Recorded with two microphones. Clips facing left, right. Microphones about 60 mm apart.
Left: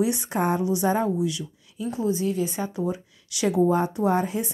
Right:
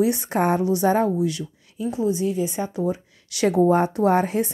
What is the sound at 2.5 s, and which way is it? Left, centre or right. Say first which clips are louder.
Speech: right 3 dB; right.